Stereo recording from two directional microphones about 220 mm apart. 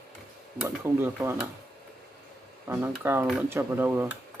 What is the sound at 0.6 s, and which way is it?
Speech, 10° right (ahead or behind).